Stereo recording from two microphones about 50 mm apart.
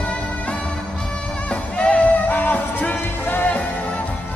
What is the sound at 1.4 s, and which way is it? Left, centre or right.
Music, left.